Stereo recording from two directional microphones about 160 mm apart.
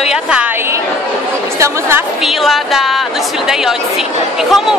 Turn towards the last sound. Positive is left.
turn(degrees=0)  # may be behind; listen again after turning